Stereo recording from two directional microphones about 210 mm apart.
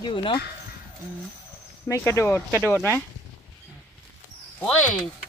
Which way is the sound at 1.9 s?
15° left (ahead or behind).